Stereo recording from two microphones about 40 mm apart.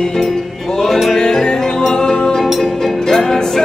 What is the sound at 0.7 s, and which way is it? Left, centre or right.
Music, centre.